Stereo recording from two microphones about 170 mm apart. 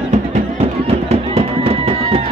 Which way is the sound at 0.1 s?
40° right (ahead or behind).